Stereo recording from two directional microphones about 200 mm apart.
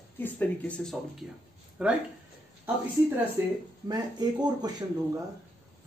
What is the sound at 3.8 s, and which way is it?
Speech, 20° right (ahead or behind).